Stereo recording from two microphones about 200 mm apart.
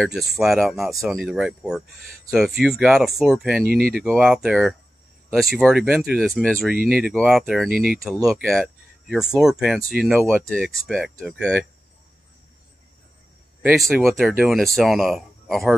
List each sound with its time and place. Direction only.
0.0 s speech: centre (ahead or behind)
3.6 s speech: 50° right (ahead or behind)
3.9 s speech: centre (ahead or behind)
13.6 s speech: 5° right (ahead or behind)